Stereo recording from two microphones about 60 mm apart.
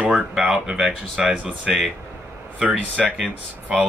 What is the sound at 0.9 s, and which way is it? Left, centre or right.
Speech, right.